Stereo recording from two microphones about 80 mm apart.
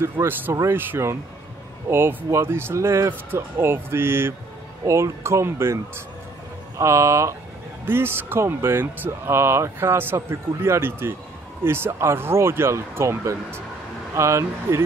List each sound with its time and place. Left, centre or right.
0.0 s speech: right
6.8 s speech: right